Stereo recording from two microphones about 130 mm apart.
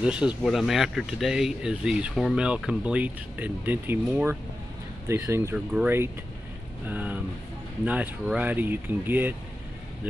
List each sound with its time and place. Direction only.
0.0 s speech: 10° right (ahead or behind)
5.0 s speech: 20° right (ahead or behind)
5.7 s speech: 10° right (ahead or behind)